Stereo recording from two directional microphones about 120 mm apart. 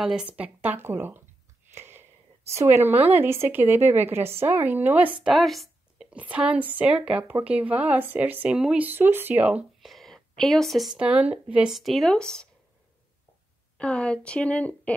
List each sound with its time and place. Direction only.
0.0 s speech: 5° right (ahead or behind)
1.8 s whispering: 20° right (ahead or behind)
2.5 s speech: 20° right (ahead or behind)
5.2 s a woman's voice: centre (ahead or behind)
9.8 s speech: centre (ahead or behind)
13.7 s speech: 10° left (ahead or behind)